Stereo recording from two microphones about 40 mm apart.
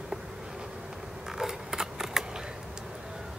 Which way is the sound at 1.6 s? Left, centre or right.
Centre.